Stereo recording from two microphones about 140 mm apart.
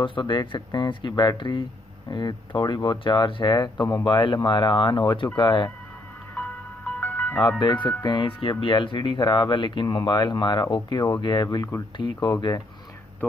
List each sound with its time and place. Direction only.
0.0 s speech: 35° left (ahead or behind)
6.3 s music: 10° left (ahead or behind)
7.6 s speech: 35° left (ahead or behind)